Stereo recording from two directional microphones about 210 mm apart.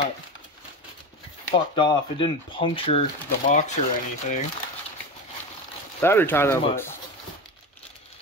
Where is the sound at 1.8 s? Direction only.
20° left (ahead or behind).